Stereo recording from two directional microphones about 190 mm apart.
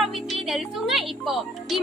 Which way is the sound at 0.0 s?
Centre (ahead or behind).